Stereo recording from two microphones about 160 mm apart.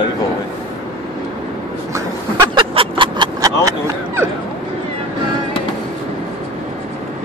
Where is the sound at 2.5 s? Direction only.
35° right (ahead or behind).